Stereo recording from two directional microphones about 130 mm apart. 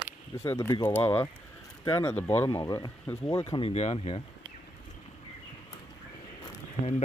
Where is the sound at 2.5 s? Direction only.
25° left (ahead or behind).